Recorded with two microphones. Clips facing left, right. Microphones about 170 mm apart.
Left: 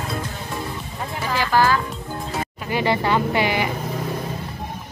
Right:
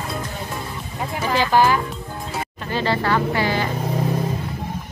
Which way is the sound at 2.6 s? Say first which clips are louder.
Left 1 dB; 15° left (ahead or behind).